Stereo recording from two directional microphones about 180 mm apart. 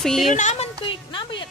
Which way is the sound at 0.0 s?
Centre (ahead or behind).